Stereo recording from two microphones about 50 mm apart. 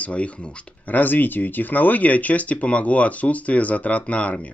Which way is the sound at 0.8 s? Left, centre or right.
Left.